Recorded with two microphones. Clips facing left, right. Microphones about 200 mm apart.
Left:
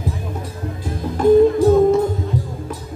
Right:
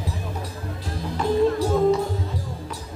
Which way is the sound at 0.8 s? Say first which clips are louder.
Left 9 dB; 50° left (ahead or behind).